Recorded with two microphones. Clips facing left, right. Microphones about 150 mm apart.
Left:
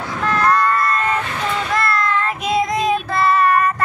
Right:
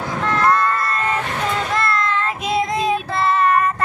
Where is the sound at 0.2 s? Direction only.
25° right (ahead or behind).